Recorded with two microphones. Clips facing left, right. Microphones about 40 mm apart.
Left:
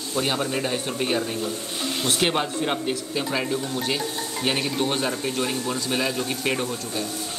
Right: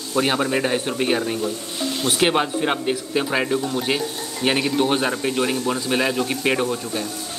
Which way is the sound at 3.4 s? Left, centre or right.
Right.